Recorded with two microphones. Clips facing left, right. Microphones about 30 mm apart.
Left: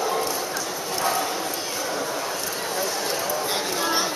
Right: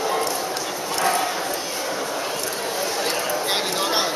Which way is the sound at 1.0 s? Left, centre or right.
Centre.